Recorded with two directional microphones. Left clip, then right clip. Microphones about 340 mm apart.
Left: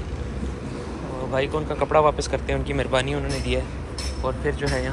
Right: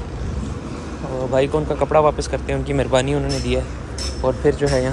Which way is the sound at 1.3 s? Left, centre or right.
Centre.